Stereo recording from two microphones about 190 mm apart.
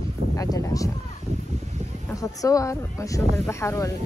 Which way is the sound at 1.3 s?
35° right (ahead or behind).